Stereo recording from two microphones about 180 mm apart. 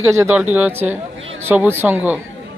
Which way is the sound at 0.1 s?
15° right (ahead or behind).